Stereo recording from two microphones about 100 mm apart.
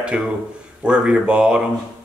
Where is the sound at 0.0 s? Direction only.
10° right (ahead or behind).